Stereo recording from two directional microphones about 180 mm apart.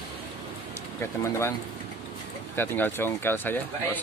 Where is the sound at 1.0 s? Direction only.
15° left (ahead or behind).